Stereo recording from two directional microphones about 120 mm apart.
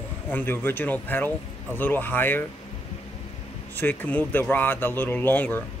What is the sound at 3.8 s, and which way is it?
Speech, 15° left (ahead or behind).